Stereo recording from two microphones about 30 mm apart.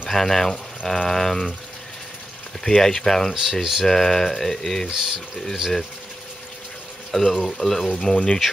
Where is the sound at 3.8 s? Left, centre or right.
Centre.